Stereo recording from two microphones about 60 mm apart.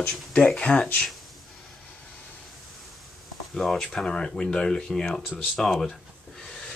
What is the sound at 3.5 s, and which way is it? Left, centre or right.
Speech, centre.